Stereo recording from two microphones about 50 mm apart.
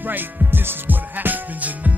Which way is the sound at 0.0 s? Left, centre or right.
Right.